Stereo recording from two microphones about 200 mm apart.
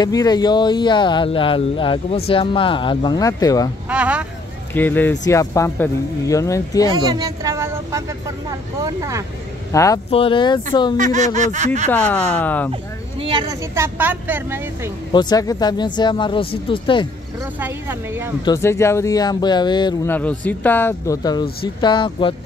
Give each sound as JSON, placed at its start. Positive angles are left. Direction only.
{"t": 0.0, "sound": "speech", "side_deg": 20}
{"t": 3.9, "sound": "speech", "side_deg": -5}
{"t": 4.7, "sound": "speech", "side_deg": 10}
{"t": 7.1, "sound": "a sound", "side_deg": -15}
{"t": 8.5, "sound": "speech", "side_deg": -15}
{"t": 9.7, "sound": "speech", "side_deg": 15}
{"t": 10.1, "sound": "speech", "side_deg": 25}
{"t": 11.0, "sound": "speech", "side_deg": -40}
{"t": 11.9, "sound": "speech", "side_deg": 10}
{"t": 13.2, "sound": "speech", "side_deg": -25}
{"t": 15.1, "sound": "speech", "side_deg": 20}
{"t": 17.6, "sound": "speech", "side_deg": -10}
{"t": 18.4, "sound": "speech", "side_deg": 15}
{"t": 20.1, "sound": "speech", "side_deg": 10}